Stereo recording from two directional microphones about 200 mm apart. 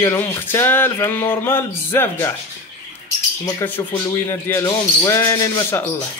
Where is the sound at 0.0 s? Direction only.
15° left (ahead or behind).